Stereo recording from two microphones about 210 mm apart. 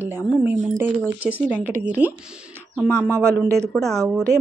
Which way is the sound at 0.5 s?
35° right (ahead or behind).